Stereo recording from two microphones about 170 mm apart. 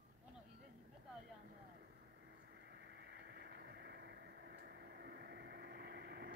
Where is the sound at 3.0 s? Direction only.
80° right.